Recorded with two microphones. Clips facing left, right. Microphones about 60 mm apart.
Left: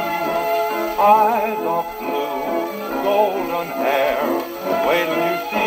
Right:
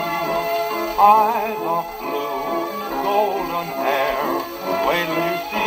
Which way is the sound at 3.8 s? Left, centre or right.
Left.